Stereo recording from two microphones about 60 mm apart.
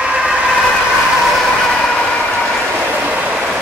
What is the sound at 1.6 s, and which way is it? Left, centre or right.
Vehicle, centre.